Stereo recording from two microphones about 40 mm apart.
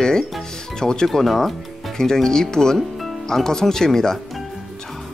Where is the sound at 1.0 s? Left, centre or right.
Centre.